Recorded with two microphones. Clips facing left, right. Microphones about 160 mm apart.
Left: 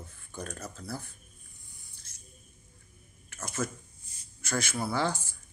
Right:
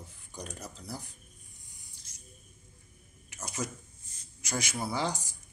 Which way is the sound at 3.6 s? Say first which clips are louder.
Left 4 dB; 15° right (ahead or behind).